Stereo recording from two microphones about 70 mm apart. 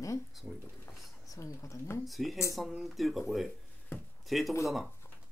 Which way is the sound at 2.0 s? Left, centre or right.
Centre.